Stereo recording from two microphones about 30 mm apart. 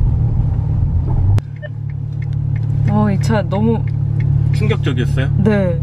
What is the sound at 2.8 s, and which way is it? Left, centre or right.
Speech, centre.